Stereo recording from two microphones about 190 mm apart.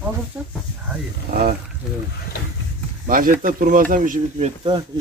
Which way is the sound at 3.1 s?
45° right (ahead or behind).